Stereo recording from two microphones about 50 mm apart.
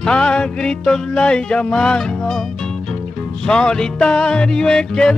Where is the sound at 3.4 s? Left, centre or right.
Centre.